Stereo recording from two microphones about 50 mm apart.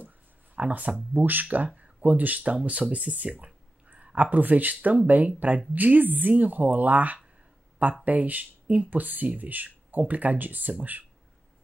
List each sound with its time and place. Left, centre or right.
0.6 s speech: right